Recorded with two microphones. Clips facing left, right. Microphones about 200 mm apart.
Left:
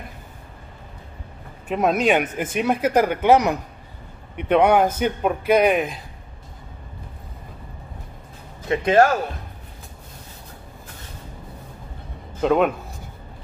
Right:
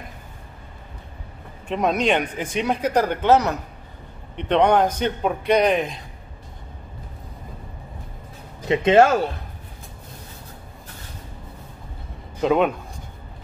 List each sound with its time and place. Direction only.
1.7 s a man's voice: 5° left (ahead or behind)
8.6 s speech: 25° right (ahead or behind)
12.4 s speech: centre (ahead or behind)